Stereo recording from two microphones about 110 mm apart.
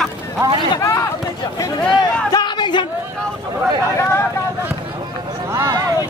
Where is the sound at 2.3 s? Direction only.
45° left (ahead or behind).